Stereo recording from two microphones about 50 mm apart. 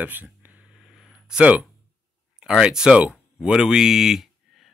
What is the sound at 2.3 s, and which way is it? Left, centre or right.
Speech, centre.